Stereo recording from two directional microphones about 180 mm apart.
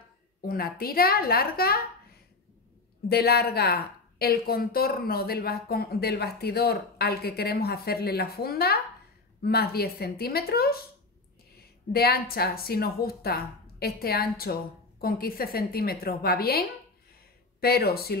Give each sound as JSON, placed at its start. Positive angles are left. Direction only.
{"t": 0.4, "sound": "a woman's voice", "side_deg": 55}
{"t": 3.1, "sound": "a woman's voice", "side_deg": 60}
{"t": 11.9, "sound": "a woman's voice", "side_deg": 60}